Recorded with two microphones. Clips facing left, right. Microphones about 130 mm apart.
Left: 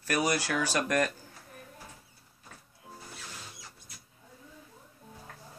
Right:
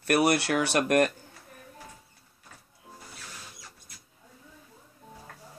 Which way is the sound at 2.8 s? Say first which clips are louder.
Left 1 dB; 5° left (ahead or behind).